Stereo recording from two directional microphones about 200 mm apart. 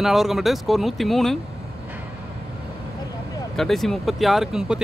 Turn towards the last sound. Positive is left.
turn(degrees=-5)  # may be behind; listen again after turning